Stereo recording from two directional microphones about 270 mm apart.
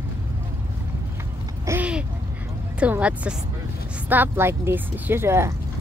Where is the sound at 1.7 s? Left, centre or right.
Centre.